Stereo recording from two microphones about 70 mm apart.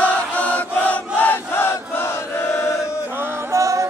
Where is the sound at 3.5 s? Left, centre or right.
Right.